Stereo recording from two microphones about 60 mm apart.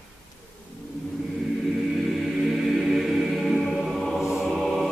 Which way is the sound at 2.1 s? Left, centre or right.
Centre.